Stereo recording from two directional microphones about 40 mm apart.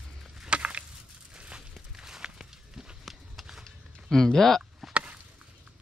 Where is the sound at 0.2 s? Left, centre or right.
Centre.